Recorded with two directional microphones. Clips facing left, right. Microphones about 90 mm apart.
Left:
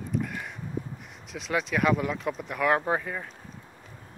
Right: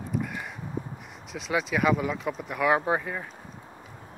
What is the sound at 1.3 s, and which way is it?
Speech, centre (ahead or behind).